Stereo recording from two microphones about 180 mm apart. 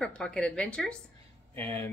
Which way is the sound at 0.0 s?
5° left (ahead or behind).